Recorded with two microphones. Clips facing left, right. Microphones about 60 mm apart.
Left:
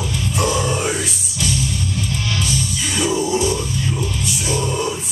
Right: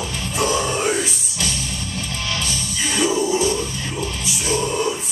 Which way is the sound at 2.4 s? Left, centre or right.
Right.